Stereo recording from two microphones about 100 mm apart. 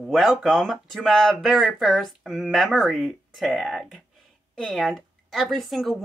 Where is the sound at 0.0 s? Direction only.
5° right (ahead or behind).